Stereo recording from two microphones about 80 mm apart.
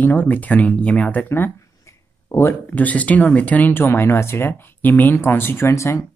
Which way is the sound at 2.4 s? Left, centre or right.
Centre.